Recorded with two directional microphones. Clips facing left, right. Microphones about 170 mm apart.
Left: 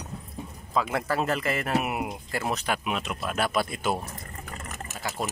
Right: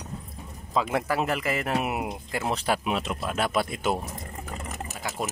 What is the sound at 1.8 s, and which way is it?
Speech, 25° right (ahead or behind).